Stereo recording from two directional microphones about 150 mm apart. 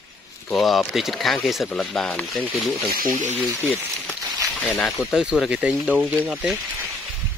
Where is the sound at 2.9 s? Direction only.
75° right (ahead or behind).